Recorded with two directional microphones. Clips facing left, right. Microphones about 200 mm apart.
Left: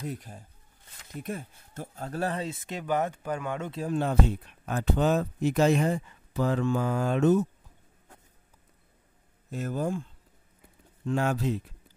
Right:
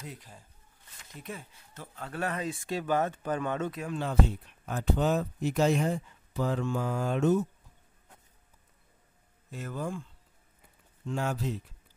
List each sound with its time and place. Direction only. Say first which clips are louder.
0.0 s speech: left 8 dB; 50° left (ahead or behind); by 3.7 s 10° left (ahead or behind)
3.9 s speech: left 5 dB; 55° left (ahead or behind); by 7.3 s 75° left (ahead or behind)
9.5 s speech: left 6 dB; 45° left (ahead or behind)
11.1 s speech: left 5 dB; 70° left (ahead or behind)